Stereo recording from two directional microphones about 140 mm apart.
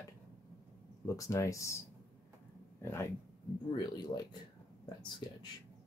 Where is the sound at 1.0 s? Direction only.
25° left (ahead or behind).